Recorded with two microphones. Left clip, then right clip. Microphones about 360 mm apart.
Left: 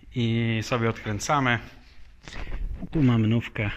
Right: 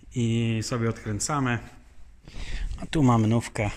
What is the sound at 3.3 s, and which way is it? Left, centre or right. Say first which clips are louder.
Speech: right 1 dB; centre.